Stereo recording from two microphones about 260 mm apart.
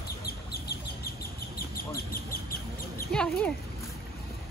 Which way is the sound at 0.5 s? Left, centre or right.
Left.